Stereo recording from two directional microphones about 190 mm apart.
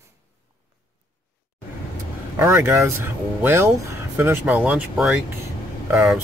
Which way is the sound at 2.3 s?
15° right (ahead or behind).